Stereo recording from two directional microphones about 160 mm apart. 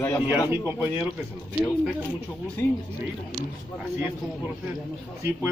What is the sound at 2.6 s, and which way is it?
Speech, 15° left (ahead or behind).